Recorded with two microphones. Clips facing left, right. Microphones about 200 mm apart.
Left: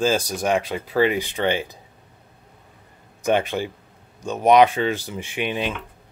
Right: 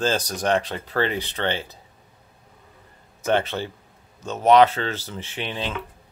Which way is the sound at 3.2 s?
15° left (ahead or behind).